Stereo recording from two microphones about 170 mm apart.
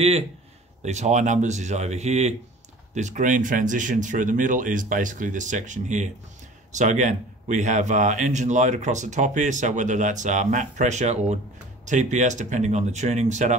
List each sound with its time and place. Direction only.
0.8 s speech: 40° right (ahead or behind)